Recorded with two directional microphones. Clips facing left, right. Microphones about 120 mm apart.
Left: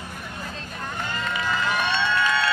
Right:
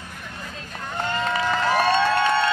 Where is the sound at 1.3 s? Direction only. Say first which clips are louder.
Right 3 dB; 40° right (ahead or behind).